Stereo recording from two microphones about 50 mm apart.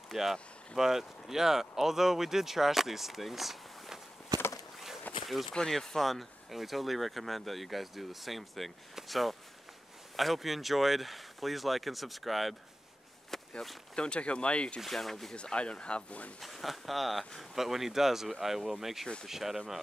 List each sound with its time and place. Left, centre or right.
0.1 s speech: centre
5.2 s a sound: centre
5.5 s speech: centre
13.3 s walk: centre
13.9 s speech: left
14.8 s speech: centre
15.3 s speech: left
16.3 s speech: centre